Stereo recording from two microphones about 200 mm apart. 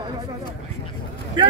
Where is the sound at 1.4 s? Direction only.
25° right (ahead or behind).